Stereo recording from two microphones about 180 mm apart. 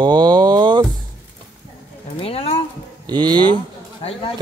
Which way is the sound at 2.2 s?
30° left (ahead or behind).